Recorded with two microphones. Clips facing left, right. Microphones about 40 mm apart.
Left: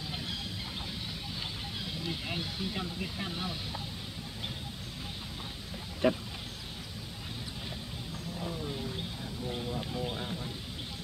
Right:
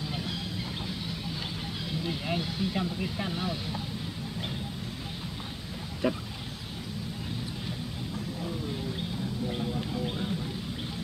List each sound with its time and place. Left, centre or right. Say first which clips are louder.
2.0 s speech: right 5 dB; centre
6.0 s speech: left 1 dB; centre
8.4 s wild animals: even; centre
9.7 s a sound: right 3 dB; centre